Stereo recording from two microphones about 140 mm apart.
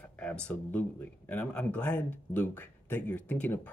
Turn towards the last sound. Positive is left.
turn(degrees=10)  # may be behind; listen again after turning